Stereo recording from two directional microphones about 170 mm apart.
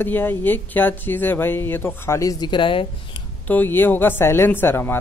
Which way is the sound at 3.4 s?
10° left (ahead or behind).